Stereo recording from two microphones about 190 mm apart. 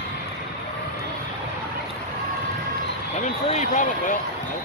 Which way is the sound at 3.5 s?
40° left (ahead or behind).